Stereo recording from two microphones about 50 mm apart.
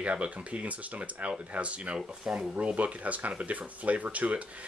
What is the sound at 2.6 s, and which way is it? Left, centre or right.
Speech, right.